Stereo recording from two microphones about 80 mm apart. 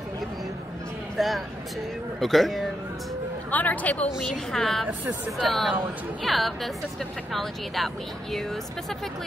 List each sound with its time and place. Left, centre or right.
1.1 s speech: centre
3.4 s speech: centre
4.2 s speech: centre